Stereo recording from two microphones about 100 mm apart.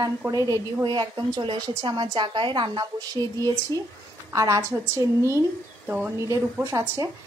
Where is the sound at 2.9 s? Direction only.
35° right (ahead or behind).